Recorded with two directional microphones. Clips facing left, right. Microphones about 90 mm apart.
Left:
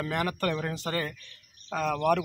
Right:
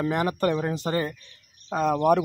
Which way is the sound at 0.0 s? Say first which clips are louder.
Right 5 dB; 25° right (ahead or behind).